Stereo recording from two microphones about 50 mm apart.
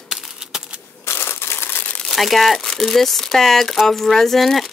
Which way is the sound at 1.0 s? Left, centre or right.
Left.